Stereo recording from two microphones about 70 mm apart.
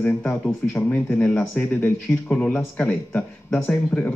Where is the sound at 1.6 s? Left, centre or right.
Left.